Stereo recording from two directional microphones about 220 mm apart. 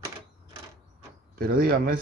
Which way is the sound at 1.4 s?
40° right (ahead or behind).